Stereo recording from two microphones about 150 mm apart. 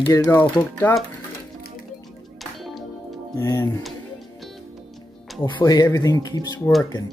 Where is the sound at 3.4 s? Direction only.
20° left (ahead or behind).